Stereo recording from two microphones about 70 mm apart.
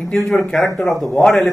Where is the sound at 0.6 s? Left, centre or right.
Left.